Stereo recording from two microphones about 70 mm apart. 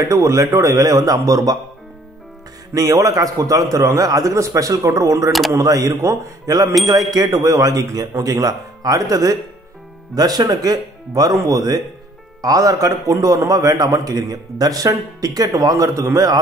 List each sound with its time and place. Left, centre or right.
0.0 s a man's voice: right
2.7 s a man's voice: right